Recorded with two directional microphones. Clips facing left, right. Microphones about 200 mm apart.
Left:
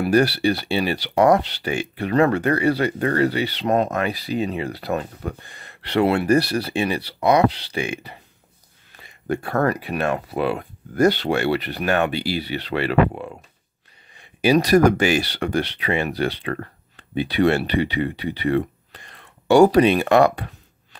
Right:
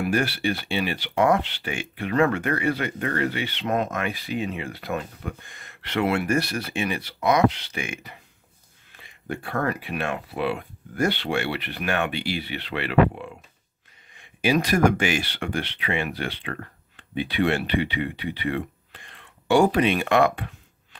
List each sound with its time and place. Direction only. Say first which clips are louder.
0.0 s speech: left 6 dB; 35° left (ahead or behind)